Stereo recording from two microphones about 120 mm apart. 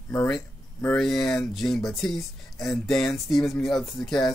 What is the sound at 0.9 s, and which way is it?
Speech, 5° left (ahead or behind).